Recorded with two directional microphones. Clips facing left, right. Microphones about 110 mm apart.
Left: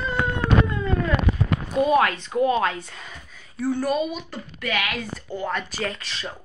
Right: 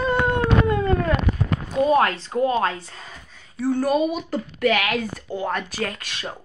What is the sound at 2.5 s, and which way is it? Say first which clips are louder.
Speech: even; 35° right (ahead or behind).